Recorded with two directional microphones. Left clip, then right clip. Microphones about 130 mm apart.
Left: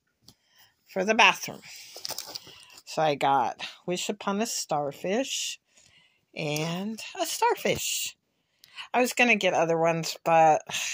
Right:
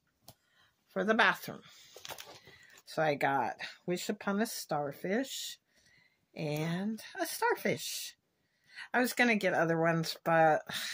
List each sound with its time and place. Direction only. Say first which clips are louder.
1.0 s speech: left 7 dB; 20° left (ahead or behind)
2.8 s speech: left 6 dB; 25° left (ahead or behind)